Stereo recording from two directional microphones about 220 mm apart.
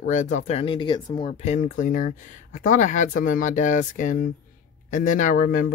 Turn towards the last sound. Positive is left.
turn(degrees=35)  # may be behind; listen again after turning